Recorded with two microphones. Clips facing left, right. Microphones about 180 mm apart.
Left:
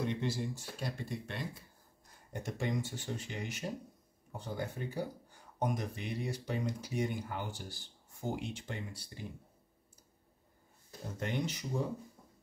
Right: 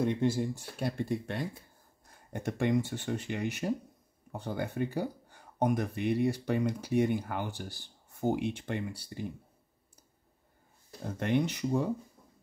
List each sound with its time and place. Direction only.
0.0 s speech: 50° right (ahead or behind)
11.1 s speech: 60° right (ahead or behind)